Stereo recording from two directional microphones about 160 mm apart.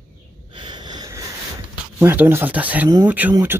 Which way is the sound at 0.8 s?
25° right (ahead or behind).